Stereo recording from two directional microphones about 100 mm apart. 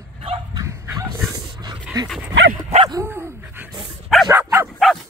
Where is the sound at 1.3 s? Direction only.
45° right (ahead or behind).